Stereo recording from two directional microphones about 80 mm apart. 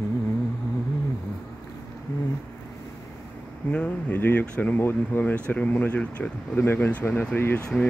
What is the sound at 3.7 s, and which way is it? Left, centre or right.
Speech, centre.